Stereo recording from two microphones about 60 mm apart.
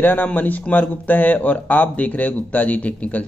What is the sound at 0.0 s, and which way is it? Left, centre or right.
A man's voice, left.